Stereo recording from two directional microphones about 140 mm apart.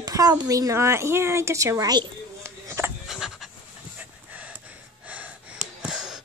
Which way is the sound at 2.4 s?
20° right (ahead or behind).